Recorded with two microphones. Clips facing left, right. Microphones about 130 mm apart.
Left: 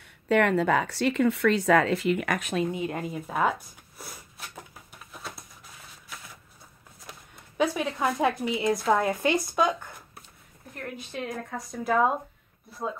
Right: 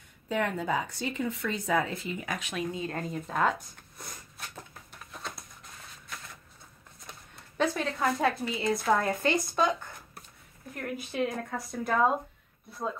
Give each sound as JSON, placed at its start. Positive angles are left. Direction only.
{"t": 0.0, "sound": "speech", "side_deg": 75}
{"t": 2.6, "sound": "a sound", "side_deg": 20}
{"t": 7.1, "sound": "speech", "side_deg": 10}
{"t": 11.0, "sound": "a woman's voice", "side_deg": -5}